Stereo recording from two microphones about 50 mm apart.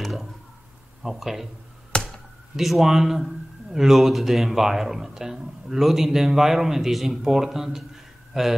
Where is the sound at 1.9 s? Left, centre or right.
Centre.